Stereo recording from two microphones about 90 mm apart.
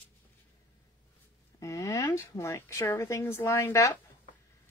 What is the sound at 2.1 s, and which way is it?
A woman's voice, 35° left (ahead or behind).